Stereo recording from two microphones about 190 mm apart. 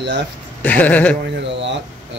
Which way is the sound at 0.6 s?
10° left (ahead or behind).